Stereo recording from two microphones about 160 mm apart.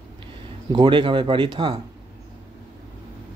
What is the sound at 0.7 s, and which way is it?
Speech, 30° right (ahead or behind).